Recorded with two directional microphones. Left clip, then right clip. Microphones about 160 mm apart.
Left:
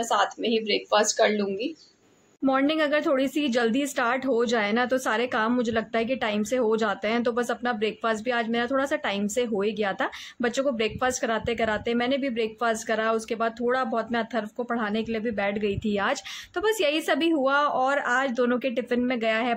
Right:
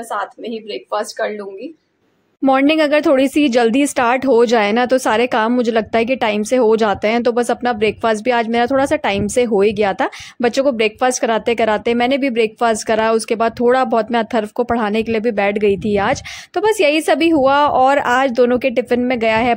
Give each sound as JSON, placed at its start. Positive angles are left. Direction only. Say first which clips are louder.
{"t": 0.1, "sound": "speech", "louder": "right 1 dB", "side_deg": -5}
{"t": 2.4, "sound": "speech", "louder": "right 10 dB", "side_deg": -45}